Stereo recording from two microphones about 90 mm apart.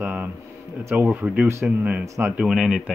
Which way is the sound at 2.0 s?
35° right (ahead or behind).